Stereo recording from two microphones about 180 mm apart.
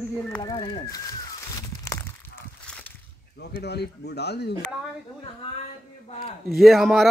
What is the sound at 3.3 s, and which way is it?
Speech, 70° left (ahead or behind).